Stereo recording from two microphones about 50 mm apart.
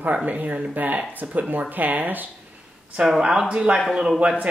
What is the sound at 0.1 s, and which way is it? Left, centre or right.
Speech, right.